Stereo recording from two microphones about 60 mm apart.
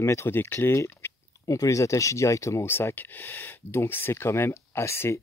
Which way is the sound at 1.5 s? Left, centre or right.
Left.